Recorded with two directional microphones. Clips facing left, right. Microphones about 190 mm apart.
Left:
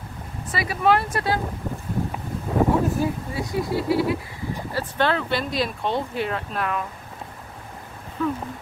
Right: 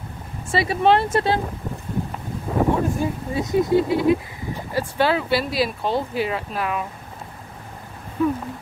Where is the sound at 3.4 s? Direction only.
20° right (ahead or behind); by 6.8 s 5° right (ahead or behind).